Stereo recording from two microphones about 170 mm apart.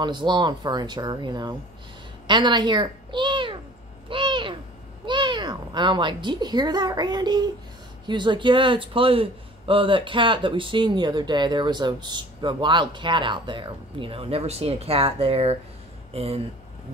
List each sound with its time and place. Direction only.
0.0 s speech: 25° right (ahead or behind)
2.2 s a sound: 25° right (ahead or behind)
4.1 s owl: 30° right (ahead or behind)
5.0 s speech: 25° right (ahead or behind)